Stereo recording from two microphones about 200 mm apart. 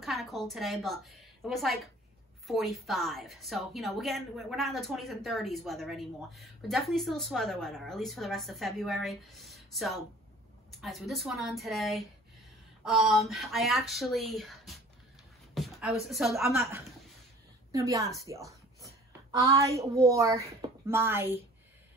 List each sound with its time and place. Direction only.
0.0 s a woman's voice: centre (ahead or behind)
17.6 s a woman's voice: 15° right (ahead or behind)